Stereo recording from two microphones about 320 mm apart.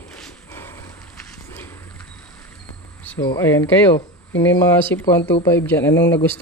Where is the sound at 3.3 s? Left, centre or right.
Centre.